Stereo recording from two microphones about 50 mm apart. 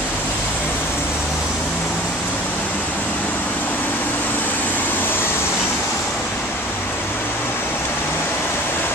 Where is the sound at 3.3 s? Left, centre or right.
Left.